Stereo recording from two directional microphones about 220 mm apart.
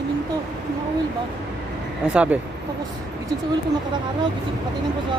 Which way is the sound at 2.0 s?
5° right (ahead or behind).